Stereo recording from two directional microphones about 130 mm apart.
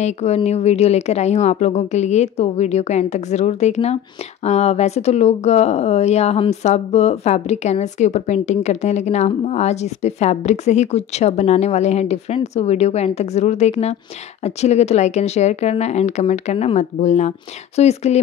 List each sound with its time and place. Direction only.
0.0 s speech: 55° left (ahead or behind)